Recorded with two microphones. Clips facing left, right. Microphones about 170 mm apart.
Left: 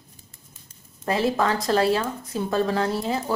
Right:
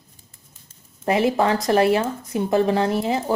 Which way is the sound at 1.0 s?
20° right (ahead or behind).